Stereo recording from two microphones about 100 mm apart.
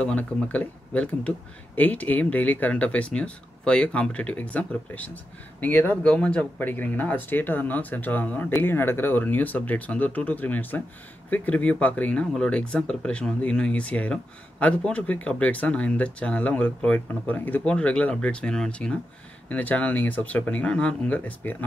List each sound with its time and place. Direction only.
0.0 s speech: 15° left (ahead or behind)